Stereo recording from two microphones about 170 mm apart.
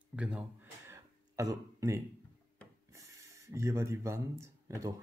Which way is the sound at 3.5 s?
15° right (ahead or behind).